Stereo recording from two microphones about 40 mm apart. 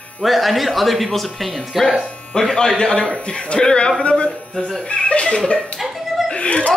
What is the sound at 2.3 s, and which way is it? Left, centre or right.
A man's voice, centre.